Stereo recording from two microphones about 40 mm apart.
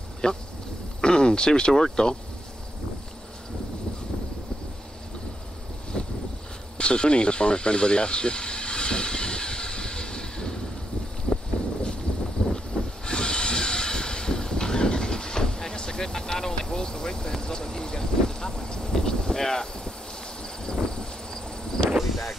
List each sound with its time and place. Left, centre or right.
0.2 s speech: left
5.9 s vehicle: centre
6.8 s a sound: left
12.5 s hiss: centre
20.4 s insect: centre
21.9 s a sound: centre